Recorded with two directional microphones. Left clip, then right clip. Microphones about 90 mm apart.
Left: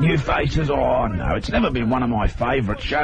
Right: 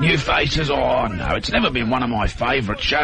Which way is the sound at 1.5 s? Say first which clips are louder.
Right 2 dB; 5° left (ahead or behind).